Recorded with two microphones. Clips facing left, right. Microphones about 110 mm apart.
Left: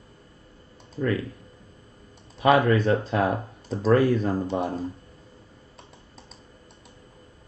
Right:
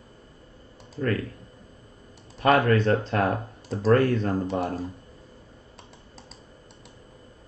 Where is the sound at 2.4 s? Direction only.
5° left (ahead or behind).